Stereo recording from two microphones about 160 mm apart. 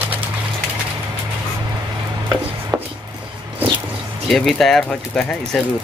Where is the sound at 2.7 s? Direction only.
10° right (ahead or behind).